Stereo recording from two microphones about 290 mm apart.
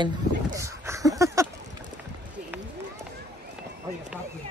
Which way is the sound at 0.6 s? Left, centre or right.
Centre.